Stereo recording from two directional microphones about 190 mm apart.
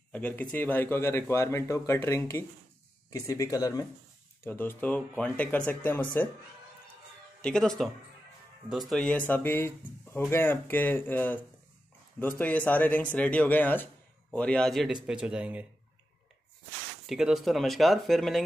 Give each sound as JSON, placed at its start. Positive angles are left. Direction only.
{"t": 0.1, "sound": "speech", "side_deg": 5}
{"t": 7.4, "sound": "speech", "side_deg": 5}
{"t": 17.0, "sound": "speech", "side_deg": 0}